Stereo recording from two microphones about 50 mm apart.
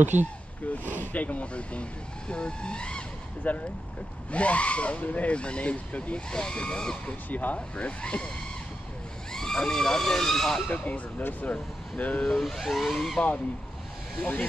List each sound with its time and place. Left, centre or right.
0.0 s speech: right
0.7 s a sound: left
1.0 s speech: left
3.4 s speech: left; by 7.2 s centre
7.2 s speech: left
9.3 s speech: centre
10.7 s speech: left
12.3 s speech: centre